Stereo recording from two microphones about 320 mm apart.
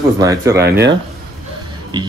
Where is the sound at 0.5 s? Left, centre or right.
Right.